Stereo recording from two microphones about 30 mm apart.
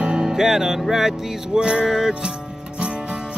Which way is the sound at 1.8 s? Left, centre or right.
Centre.